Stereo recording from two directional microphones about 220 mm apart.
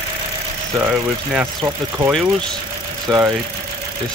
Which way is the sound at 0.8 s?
5° right (ahead or behind).